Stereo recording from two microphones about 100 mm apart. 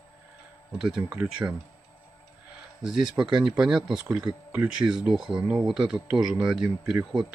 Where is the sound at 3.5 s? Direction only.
10° right (ahead or behind).